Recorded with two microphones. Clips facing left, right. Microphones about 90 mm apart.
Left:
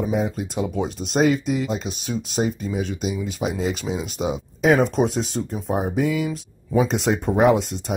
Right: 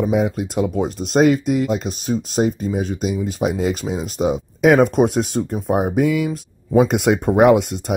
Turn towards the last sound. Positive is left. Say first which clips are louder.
# right 4 dB
turn(degrees=-60)  # may be behind; listen again after turning